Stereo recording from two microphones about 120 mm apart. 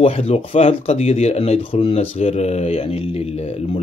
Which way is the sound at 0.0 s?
55° left (ahead or behind).